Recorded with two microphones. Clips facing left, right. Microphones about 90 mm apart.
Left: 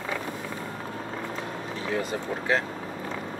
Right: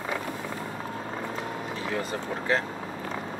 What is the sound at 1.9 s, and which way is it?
Speech, 20° left (ahead or behind).